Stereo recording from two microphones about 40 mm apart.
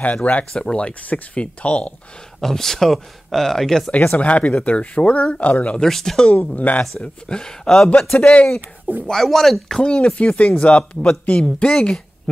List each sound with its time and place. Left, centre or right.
0.0 s speech: left
0.5 s speech: left
2.4 s speech: centre
4.1 s speech: left
5.9 s speech: centre
6.3 s speech: left
7.2 s speech: centre
8.2 s speech: left
8.5 s speech: right
9.1 s speech: centre
9.8 s speech: left